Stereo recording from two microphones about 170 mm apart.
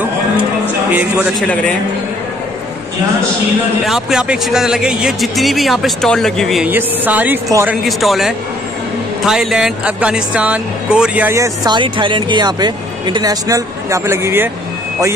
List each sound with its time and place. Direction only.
3.8 s speech: centre (ahead or behind)
6.7 s speech: 10° right (ahead or behind)
7.8 s speech: centre (ahead or behind)